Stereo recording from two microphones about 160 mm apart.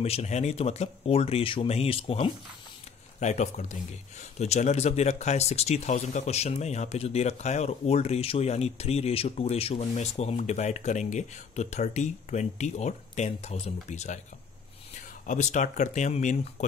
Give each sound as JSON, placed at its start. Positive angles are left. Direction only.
{"t": 0.0, "sound": "speech", "side_deg": 40}
{"t": 15.2, "sound": "speech", "side_deg": 50}